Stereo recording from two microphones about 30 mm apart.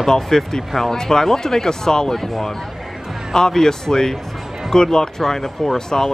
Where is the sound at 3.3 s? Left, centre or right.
Left.